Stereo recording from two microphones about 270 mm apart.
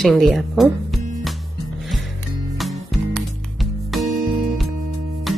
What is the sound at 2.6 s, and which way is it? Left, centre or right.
Music, centre.